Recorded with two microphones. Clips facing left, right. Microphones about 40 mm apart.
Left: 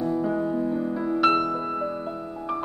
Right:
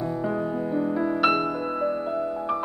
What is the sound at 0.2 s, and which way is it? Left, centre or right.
Music, centre.